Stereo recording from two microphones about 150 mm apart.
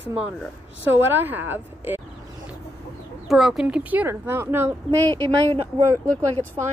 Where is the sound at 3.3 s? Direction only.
Centre (ahead or behind); by 4.7 s 15° right (ahead or behind).